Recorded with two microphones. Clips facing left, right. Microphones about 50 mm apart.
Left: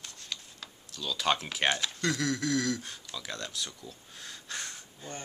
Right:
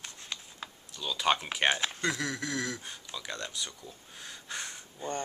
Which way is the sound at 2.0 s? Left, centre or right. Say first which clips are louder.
Left 2 dB; centre.